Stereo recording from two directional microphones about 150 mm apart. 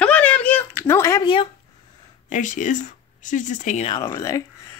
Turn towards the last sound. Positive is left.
turn(degrees=20)  # may be behind; listen again after turning